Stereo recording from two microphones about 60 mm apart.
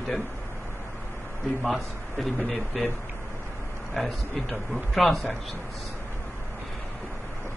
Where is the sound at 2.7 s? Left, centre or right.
Centre.